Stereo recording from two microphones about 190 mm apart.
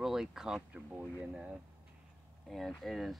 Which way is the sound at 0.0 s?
Centre (ahead or behind).